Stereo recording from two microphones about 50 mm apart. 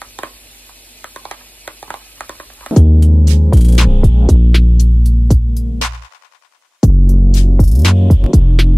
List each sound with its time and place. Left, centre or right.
0.0 s a sound: left
1.0 s music: left
2.7 s music: centre